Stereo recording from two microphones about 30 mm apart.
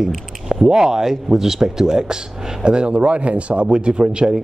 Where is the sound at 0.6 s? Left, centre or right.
Right.